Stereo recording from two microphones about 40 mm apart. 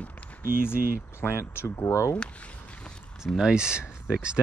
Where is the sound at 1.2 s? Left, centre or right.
Left.